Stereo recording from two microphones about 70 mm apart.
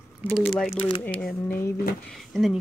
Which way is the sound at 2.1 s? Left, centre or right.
Centre.